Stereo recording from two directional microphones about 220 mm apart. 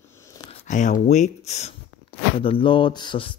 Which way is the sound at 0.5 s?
35° left (ahead or behind).